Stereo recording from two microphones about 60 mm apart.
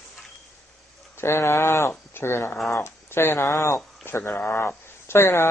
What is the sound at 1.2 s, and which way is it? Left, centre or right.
Speech, left.